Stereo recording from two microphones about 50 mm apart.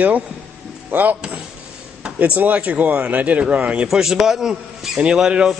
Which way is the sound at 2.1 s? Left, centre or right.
Right.